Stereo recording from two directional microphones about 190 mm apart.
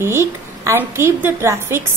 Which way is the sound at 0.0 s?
15° right (ahead or behind).